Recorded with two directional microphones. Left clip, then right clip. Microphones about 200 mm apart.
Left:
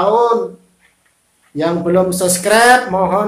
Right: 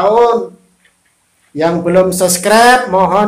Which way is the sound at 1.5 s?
35° right (ahead or behind).